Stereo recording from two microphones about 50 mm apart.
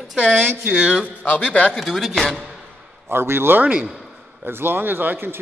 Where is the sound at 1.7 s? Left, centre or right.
Centre.